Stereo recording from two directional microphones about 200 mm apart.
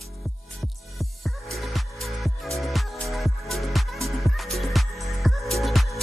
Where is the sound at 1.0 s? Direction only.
Centre (ahead or behind).